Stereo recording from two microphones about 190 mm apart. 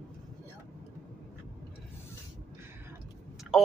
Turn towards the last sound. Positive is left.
turn(degrees=0)  # may be behind; listen again after turning